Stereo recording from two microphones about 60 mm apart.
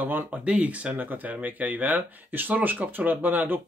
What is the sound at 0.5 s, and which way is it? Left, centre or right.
Speech, right.